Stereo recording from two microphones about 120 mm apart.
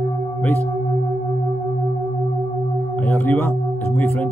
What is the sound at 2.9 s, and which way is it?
Music, 15° left (ahead or behind).